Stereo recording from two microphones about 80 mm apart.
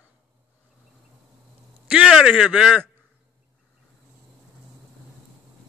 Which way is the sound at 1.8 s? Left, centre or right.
Centre.